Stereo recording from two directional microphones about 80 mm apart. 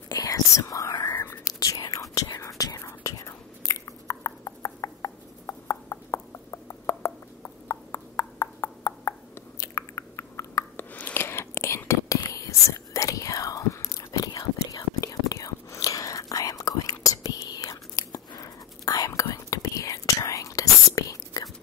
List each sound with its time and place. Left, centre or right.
0.1 s whispering: left
1.1 s whispering: left
1.5 s whispering: left
9.6 s chewing: left
10.8 s whispering: left